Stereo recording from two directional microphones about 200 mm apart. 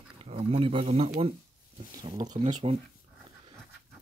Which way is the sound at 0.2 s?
30° right (ahead or behind).